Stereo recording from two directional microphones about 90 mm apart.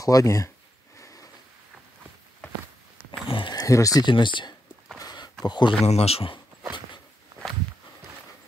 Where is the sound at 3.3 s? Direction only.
75° left (ahead or behind).